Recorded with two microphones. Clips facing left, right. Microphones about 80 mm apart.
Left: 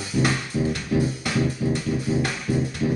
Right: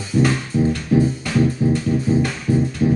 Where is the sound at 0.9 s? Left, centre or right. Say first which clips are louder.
Right 6 dB; right.